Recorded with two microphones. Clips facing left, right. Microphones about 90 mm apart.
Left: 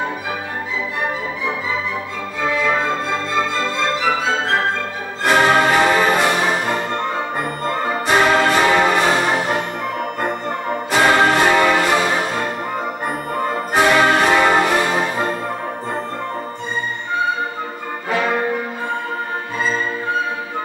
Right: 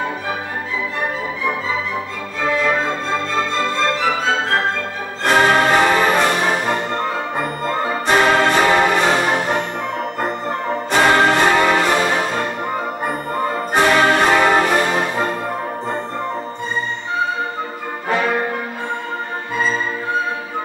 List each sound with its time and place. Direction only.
5.2 s music: centre (ahead or behind)
13.7 s music: centre (ahead or behind)